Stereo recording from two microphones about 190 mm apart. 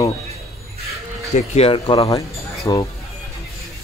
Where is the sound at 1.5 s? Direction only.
30° left (ahead or behind).